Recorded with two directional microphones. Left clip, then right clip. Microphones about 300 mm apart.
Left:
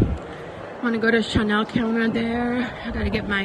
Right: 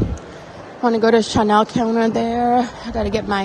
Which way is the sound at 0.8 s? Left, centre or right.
Centre.